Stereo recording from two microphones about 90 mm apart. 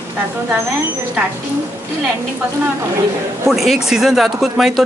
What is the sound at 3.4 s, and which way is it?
Speech, 5° right (ahead or behind).